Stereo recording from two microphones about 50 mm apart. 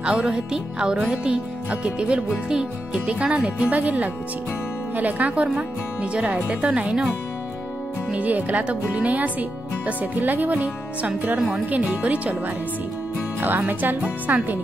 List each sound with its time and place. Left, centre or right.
0.0 s speech: right
8.1 s speech: right
13.4 s speech: right